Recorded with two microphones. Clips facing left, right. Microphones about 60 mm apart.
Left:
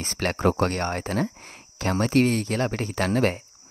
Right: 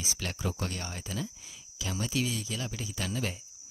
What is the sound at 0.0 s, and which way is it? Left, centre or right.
Speech, left.